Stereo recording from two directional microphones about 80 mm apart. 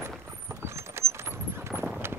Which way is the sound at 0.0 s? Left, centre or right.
Right.